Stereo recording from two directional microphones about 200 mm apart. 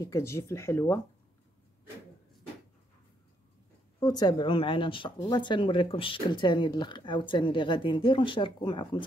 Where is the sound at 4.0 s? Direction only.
20° left (ahead or behind).